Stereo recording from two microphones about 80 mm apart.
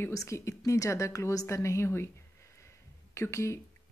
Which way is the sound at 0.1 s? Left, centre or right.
Left.